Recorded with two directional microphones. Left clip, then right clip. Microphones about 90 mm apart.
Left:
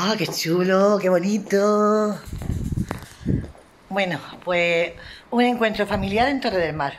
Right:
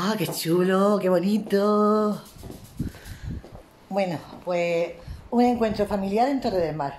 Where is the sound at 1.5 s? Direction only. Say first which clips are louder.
Left 3 dB; 15° left (ahead or behind).